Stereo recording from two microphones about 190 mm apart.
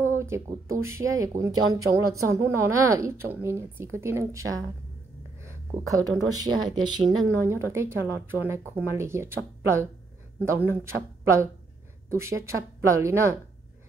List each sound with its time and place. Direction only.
0.0 s a woman's voice: 15° right (ahead or behind)
12.1 s a woman's voice: 15° right (ahead or behind)